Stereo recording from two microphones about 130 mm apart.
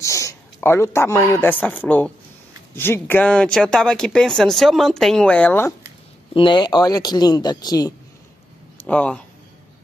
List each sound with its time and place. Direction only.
0.0 s speech: 25° left (ahead or behind)
6.3 s speech: 40° left (ahead or behind)
8.7 s speech: 10° left (ahead or behind)